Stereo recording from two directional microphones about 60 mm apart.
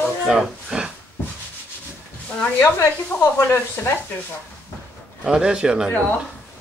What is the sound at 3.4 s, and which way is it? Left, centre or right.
Speech, left.